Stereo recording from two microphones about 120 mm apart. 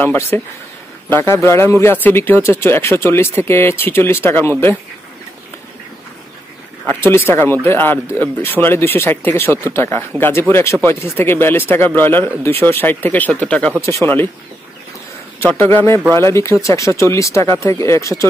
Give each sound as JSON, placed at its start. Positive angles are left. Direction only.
{"t": 0.0, "sound": "speech", "side_deg": 15}
{"t": 7.1, "sound": "speech", "side_deg": 20}
{"t": 15.4, "sound": "speech", "side_deg": 20}